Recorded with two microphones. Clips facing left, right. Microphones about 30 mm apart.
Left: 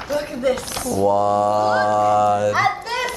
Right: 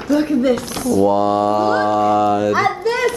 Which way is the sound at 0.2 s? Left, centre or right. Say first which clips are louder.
Right 5 dB; centre.